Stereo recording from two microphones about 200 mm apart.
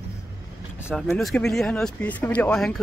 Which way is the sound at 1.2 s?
Centre (ahead or behind).